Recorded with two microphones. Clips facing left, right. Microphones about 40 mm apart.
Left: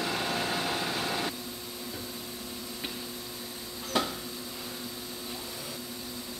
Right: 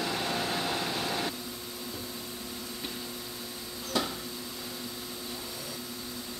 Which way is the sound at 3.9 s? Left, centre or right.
Centre.